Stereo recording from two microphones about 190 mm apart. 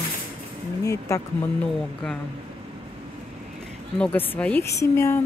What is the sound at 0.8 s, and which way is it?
Speech, 15° left (ahead or behind).